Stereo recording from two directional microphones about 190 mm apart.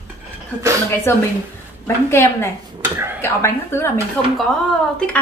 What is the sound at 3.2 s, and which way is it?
A woman's voice, 10° left (ahead or behind).